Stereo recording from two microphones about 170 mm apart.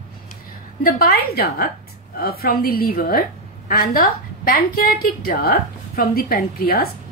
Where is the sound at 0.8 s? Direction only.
60° left (ahead or behind).